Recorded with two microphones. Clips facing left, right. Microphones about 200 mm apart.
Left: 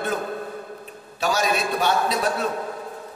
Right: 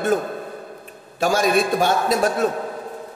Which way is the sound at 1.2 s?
50° right (ahead or behind).